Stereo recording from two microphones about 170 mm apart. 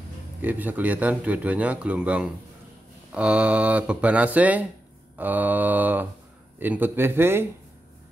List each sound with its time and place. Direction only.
0.4 s a man's voice: 10° right (ahead or behind)